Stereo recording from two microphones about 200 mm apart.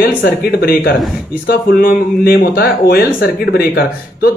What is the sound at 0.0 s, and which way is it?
Speech, 50° left (ahead or behind).